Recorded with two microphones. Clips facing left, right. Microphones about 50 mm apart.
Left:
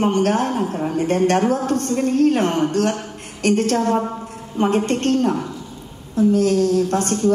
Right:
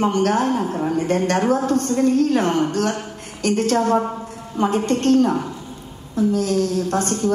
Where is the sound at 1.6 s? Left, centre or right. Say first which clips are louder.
Right 2 dB; left.